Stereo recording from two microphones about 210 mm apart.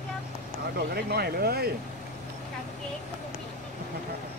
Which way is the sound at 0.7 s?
50° right (ahead or behind).